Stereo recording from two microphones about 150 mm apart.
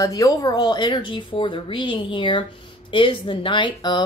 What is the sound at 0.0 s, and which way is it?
A woman's voice, 25° left (ahead or behind).